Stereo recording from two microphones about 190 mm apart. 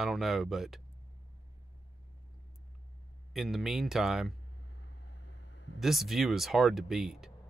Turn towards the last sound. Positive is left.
turn(degrees=0)  # may be behind; listen again after turning